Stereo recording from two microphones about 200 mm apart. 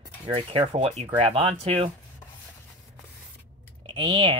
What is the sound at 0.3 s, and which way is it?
Speech, 25° right (ahead or behind).